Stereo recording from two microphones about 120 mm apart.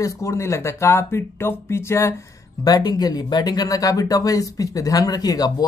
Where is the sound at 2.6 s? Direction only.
35° left (ahead or behind).